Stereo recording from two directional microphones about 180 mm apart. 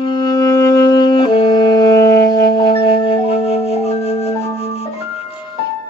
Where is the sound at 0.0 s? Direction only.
20° left (ahead or behind); by 3.9 s 35° left (ahead or behind).